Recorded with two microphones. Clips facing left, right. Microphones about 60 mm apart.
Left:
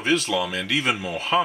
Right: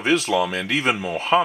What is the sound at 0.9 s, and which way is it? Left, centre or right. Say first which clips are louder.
Speech: right 3 dB; centre.